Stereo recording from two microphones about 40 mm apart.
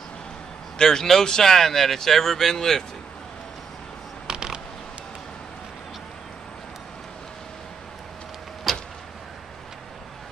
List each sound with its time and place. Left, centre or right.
0.7 s speech: centre
4.3 s a sound: right
8.7 s vehicle: centre